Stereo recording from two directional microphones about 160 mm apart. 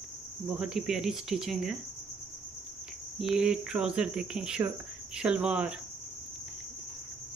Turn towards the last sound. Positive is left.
turn(degrees=-5)  # may be behind; listen again after turning